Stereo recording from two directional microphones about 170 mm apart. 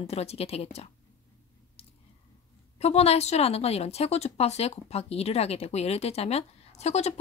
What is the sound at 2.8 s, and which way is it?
Speech, 40° left (ahead or behind).